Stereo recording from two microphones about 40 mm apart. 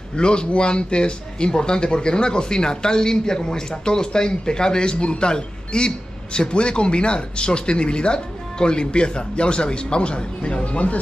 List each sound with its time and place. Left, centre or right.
0.1 s speech: left